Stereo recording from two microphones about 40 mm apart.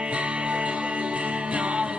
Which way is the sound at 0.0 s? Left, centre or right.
Right.